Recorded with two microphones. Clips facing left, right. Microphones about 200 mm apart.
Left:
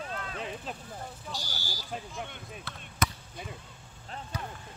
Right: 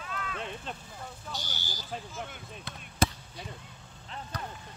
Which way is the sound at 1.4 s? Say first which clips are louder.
Left 1 dB; 20° right (ahead or behind).